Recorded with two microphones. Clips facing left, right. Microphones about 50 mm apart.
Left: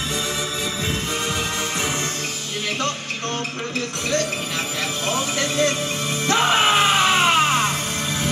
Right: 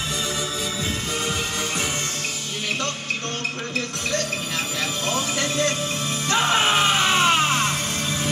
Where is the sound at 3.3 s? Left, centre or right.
Centre.